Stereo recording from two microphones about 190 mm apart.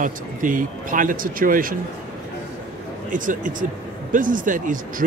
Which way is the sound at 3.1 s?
45° right (ahead or behind).